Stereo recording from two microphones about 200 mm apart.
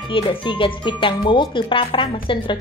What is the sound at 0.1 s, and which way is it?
A woman's voice, 25° left (ahead or behind).